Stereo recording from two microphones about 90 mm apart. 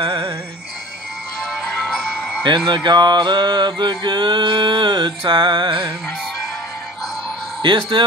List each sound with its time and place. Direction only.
0.0 s music: 60° right (ahead or behind)
2.1 s music: 10° left (ahead or behind)
2.4 s mantra: 60° right (ahead or behind)
7.6 s mantra: 60° right (ahead or behind)